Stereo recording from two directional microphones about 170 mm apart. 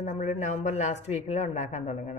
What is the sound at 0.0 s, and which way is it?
Speech, 45° left (ahead or behind).